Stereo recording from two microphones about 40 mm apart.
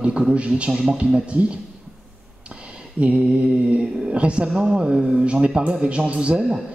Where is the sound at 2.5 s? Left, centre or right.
Right.